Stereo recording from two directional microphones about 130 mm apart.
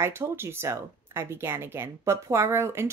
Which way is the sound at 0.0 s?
20° right (ahead or behind).